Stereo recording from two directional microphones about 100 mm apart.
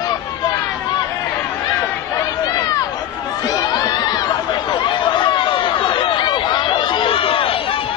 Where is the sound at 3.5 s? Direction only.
45° left (ahead or behind).